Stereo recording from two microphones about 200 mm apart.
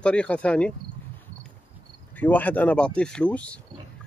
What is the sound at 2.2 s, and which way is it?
Speech, 10° left (ahead or behind).